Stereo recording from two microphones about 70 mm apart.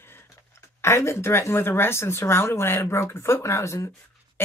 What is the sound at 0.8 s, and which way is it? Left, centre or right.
Speech, left.